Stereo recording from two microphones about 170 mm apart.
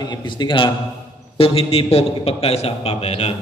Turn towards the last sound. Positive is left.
turn(degrees=35)  # may be behind; listen again after turning